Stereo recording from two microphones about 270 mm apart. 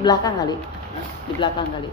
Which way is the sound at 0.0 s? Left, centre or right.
Centre.